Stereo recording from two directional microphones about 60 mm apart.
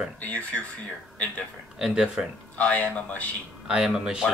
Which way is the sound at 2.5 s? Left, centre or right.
Left.